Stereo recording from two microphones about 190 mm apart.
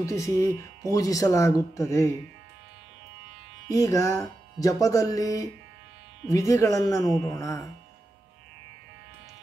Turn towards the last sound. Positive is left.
turn(degrees=15)  # may be behind; listen again after turning